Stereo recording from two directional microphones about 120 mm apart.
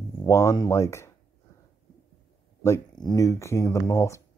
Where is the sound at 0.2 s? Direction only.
25° left (ahead or behind).